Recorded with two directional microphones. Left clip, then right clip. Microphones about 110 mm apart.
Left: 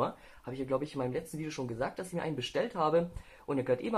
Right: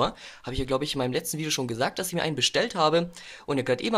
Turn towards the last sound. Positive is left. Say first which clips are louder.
# right 5 dB
turn(degrees=-25)  # may be behind; listen again after turning